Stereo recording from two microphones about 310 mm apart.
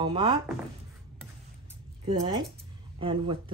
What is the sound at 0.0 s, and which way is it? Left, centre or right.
Speech, centre.